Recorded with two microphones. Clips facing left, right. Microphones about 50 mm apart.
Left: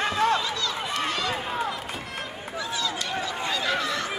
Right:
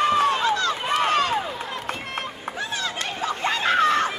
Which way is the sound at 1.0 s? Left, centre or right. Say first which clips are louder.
Right 7 dB; right.